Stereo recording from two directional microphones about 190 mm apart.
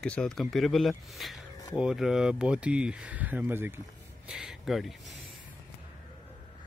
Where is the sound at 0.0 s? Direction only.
5° left (ahead or behind).